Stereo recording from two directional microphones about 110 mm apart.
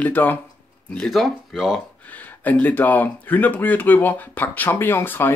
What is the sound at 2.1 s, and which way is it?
Speech, 15° left (ahead or behind).